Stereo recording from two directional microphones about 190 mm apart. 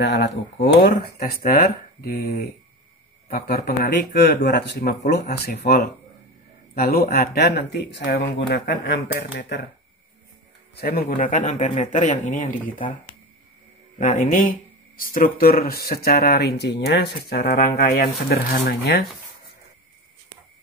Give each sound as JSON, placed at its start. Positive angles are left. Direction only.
{"t": 0.0, "sound": "speech", "side_deg": 60}
{"t": 10.8, "sound": "speech", "side_deg": 55}
{"t": 13.9, "sound": "speech", "side_deg": 45}